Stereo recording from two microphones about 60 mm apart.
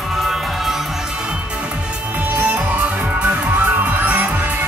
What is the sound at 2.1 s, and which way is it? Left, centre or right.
Music, right.